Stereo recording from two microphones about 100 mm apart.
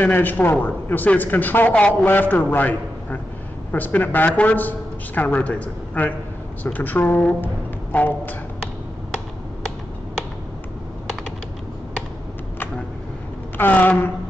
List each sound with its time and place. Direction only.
0.0 s speech: 20° left (ahead or behind)
13.6 s a woman's voice: 20° left (ahead or behind)